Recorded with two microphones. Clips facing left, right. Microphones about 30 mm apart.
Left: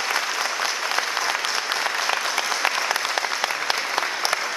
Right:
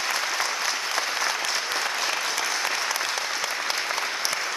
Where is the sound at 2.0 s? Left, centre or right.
Left.